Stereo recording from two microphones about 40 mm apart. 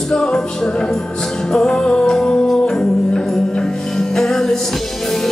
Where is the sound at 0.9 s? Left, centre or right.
Centre.